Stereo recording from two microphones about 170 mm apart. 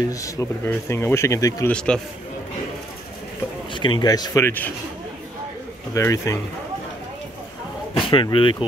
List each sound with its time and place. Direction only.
0.1 s speech: 20° left (ahead or behind)
1.7 s a man's voice: 5° left (ahead or behind)
3.7 s a man's voice: 30° left (ahead or behind); by 4.7 s 10° left (ahead or behind)
5.9 s speech: 20° left (ahead or behind)
8.1 s a man's voice: 30° left (ahead or behind)